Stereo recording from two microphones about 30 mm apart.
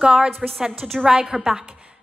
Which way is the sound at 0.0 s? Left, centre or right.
Right.